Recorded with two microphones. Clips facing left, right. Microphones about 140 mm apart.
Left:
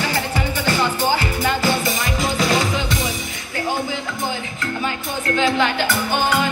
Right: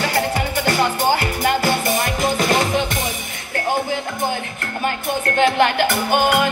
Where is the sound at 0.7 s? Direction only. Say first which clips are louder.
Right 2 dB; 55° right (ahead or behind).